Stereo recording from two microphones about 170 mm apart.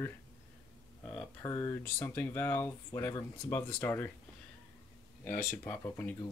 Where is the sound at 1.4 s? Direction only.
20° left (ahead or behind).